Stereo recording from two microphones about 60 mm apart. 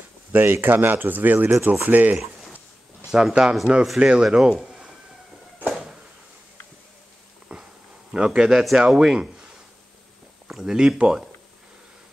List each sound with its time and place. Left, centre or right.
0.3 s speech: right
3.1 s speech: centre
5.7 s a sound: centre
7.5 s a sound: centre
8.3 s speech: centre
10.5 s speech: centre